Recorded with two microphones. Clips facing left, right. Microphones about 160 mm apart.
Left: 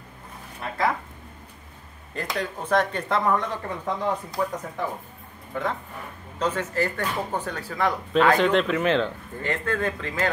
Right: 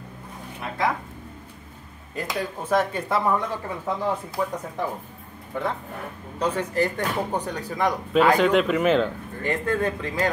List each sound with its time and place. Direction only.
0.6 s speech: centre (ahead or behind)
2.1 s speech: 5° right (ahead or behind)